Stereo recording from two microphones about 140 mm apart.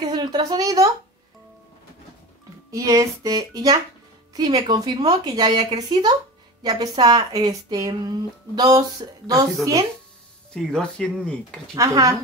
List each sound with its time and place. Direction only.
0.0 s a woman's voice: 30° right (ahead or behind)
2.7 s a woman's voice: 25° right (ahead or behind)
10.5 s speech: 5° left (ahead or behind)
11.7 s speech: 25° right (ahead or behind)